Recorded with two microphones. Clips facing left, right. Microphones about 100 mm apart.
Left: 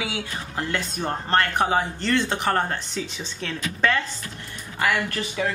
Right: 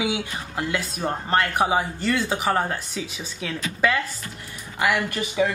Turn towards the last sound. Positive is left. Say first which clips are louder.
# right 3 dB
turn(degrees=-10)  # may be behind; listen again after turning